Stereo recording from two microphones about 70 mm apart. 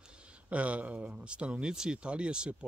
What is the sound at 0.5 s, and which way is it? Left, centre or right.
Speech, centre.